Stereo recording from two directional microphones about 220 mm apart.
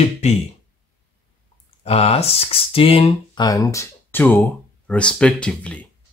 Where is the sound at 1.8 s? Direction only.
25° left (ahead or behind); by 5.8 s 5° left (ahead or behind).